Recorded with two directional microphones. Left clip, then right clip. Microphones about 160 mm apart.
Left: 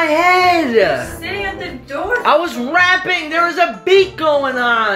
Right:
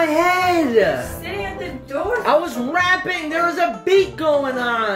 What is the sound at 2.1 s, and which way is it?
Speech, 5° left (ahead or behind).